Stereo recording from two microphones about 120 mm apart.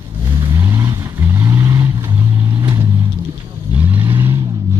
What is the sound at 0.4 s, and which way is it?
Vehicle, 25° right (ahead or behind).